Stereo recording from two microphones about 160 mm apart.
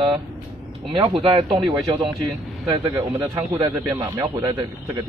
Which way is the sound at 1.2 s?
30° right (ahead or behind).